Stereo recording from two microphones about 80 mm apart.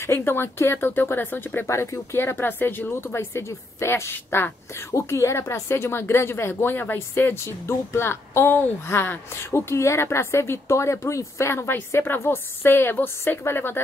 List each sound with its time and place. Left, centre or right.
0.0 s speech: left